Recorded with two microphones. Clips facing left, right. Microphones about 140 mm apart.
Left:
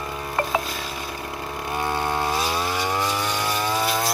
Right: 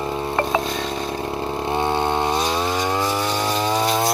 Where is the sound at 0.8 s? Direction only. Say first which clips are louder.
Right 7 dB; 25° right (ahead or behind).